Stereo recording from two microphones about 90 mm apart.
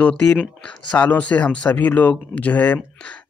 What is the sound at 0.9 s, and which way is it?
Speech, 15° left (ahead or behind).